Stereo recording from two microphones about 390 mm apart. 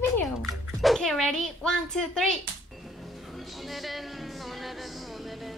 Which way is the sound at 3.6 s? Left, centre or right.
Centre.